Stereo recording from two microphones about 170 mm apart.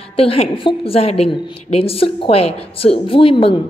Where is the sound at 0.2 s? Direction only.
35° left (ahead or behind).